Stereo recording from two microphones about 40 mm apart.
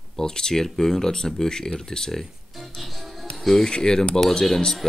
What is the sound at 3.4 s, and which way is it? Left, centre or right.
Speech, centre.